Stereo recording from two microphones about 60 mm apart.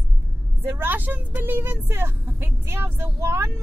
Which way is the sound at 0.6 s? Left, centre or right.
Right.